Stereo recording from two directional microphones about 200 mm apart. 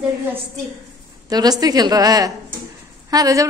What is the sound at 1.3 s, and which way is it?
A man's voice, 20° right (ahead or behind).